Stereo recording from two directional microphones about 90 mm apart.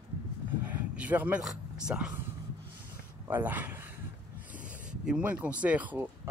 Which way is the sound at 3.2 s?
20° right (ahead or behind).